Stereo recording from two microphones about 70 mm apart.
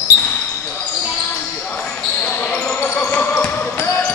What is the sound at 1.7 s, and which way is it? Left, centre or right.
Basketball bounce, centre.